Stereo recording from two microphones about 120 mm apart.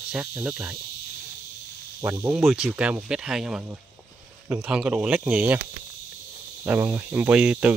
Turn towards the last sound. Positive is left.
turn(degrees=-10)  # may be behind; listen again after turning